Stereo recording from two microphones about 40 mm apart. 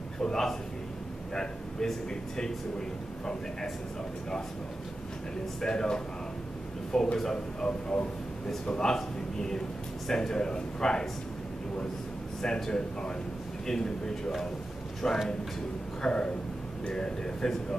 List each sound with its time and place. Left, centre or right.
0.2 s a man's voice: centre
5.6 s a man's voice: centre
8.7 s a man's voice: centre
12.4 s a man's voice: centre
16.0 s a man's voice: left